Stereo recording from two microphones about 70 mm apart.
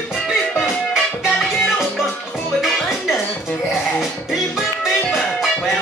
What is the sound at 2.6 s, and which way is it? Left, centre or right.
Music, centre.